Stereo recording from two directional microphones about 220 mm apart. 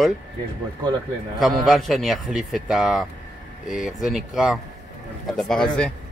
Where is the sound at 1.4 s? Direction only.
Centre (ahead or behind).